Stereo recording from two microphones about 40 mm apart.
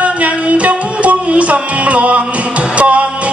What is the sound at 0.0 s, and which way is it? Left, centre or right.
Music, right.